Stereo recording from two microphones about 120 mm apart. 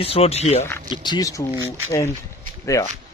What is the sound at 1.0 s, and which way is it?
A man's voice, 35° left (ahead or behind).